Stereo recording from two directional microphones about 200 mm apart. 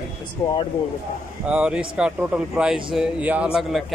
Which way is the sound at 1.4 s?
5° right (ahead or behind).